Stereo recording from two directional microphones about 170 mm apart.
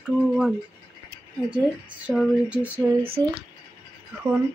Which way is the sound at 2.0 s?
5° right (ahead or behind).